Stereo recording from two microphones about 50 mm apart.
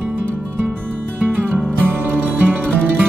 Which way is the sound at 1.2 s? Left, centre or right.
Right.